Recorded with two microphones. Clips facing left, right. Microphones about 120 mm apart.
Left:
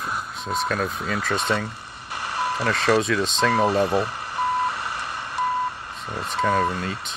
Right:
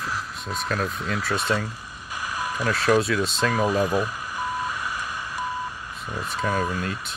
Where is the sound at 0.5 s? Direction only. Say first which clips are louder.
Left 3 dB; centre (ahead or behind).